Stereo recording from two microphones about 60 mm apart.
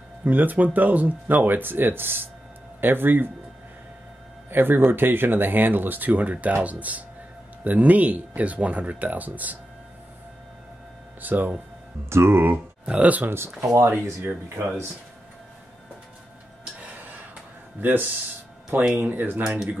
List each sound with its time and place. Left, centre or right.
0.2 s speech: right
4.5 s speech: right
11.1 s speech: right
12.1 s speech: right
12.8 s speech: right
13.3 s speech: right
13.7 s speech: right
14.2 s speech: right
17.7 s speech: right